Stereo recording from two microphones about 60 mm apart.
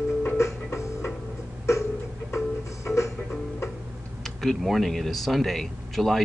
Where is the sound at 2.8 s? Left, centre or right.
Left.